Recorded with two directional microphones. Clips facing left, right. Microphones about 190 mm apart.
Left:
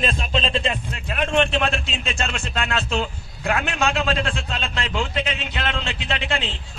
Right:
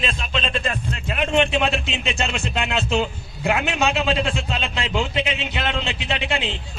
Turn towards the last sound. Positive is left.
turn(degrees=-15)  # may be behind; listen again after turning